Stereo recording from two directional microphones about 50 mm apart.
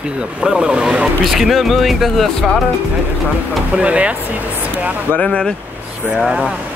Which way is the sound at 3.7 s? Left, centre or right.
Right.